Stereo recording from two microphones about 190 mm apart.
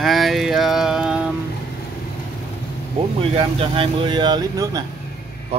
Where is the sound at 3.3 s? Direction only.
30° right (ahead or behind).